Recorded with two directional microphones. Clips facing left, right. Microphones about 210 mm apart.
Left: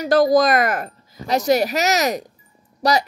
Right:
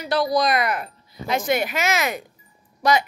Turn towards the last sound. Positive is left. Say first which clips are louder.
# left 1 dB
turn(degrees=40)  # may be behind; listen again after turning